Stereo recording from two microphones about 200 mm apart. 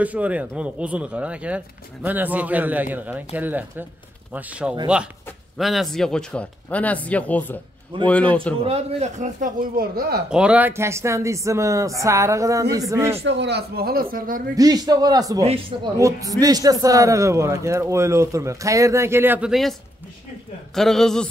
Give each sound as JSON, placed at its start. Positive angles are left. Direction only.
{"t": 0.0, "sound": "speech", "side_deg": -5}
{"t": 8.6, "sound": "speech", "side_deg": -35}
{"t": 10.3, "sound": "speech", "side_deg": -5}
{"t": 13.2, "sound": "speech", "side_deg": -60}
{"t": 14.5, "sound": "a man's voice", "side_deg": -20}
{"t": 15.4, "sound": "a man's voice", "side_deg": -30}
{"t": 16.0, "sound": "speech", "side_deg": -15}
{"t": 20.7, "sound": "a man's voice", "side_deg": 0}